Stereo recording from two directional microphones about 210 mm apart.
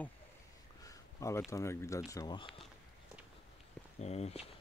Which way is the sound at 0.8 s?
15° left (ahead or behind).